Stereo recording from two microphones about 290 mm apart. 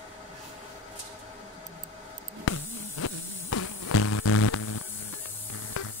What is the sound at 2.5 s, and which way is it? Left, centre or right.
Music, left.